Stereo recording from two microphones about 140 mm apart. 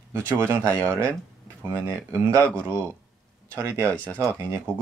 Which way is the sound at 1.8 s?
20° right (ahead or behind).